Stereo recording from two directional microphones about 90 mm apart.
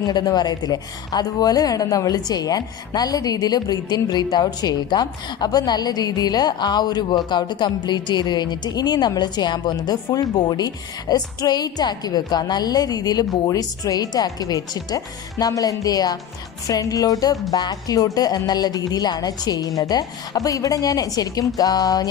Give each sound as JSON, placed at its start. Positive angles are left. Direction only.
{"t": 0.0, "sound": "a woman's voice", "side_deg": 50}